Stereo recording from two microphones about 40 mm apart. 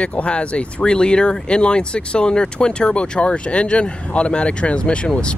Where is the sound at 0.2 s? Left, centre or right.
Left.